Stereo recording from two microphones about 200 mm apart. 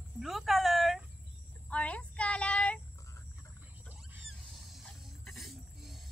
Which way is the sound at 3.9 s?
5° right (ahead or behind).